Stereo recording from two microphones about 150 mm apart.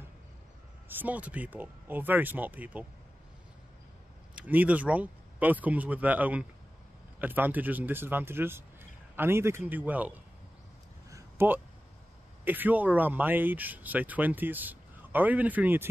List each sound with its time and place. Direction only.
0.8 s speech: 10° right (ahead or behind)
4.4 s speech: 10° right (ahead or behind)
11.1 s a sound: 20° right (ahead or behind)
12.4 s speech: 10° right (ahead or behind)